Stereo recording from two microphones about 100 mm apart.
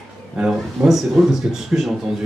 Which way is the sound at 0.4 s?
5° right (ahead or behind).